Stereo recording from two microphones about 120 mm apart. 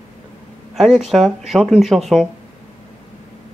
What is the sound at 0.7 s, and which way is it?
Speech, centre (ahead or behind).